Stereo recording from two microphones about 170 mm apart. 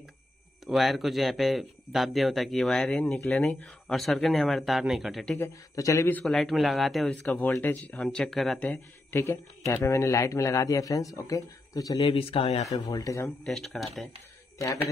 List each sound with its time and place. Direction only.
0.7 s speech: centre (ahead or behind)
5.8 s speech: 20° left (ahead or behind); by 7.2 s centre (ahead or behind)
7.2 s speech: 10° left (ahead or behind); by 12.6 s 35° left (ahead or behind)
12.9 s speech: 20° left (ahead or behind)
13.4 s speech: centre (ahead or behind)